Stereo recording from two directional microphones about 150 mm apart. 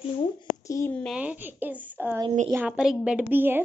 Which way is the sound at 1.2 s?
10° right (ahead or behind).